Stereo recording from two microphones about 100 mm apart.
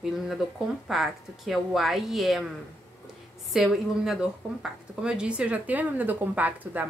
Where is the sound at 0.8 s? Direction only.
Centre (ahead or behind).